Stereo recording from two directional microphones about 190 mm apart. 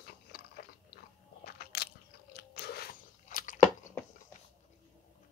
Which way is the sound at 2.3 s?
55° left (ahead or behind).